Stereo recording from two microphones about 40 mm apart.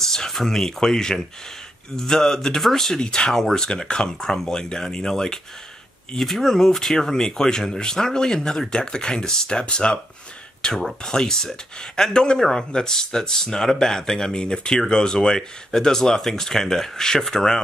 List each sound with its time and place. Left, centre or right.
0.0 s speech: centre
3.0 s speech: left